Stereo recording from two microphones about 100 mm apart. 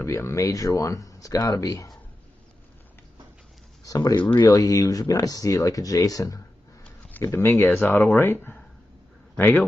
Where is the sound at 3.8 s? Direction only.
40° left (ahead or behind).